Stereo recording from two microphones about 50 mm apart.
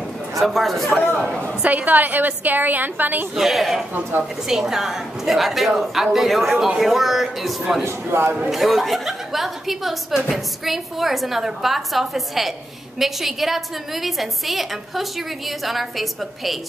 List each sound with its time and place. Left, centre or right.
0.4 s speech: centre
1.0 s speech: centre
1.6 s a woman's voice: right
3.3 s speech: centre
7.8 s speech: right
8.5 s speech: centre